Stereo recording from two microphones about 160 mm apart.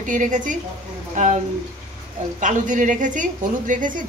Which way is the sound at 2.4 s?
55° right (ahead or behind).